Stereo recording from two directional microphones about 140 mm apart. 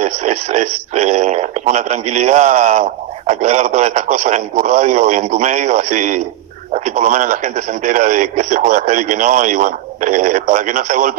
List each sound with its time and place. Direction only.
0.0 s speech: 55° right (ahead or behind)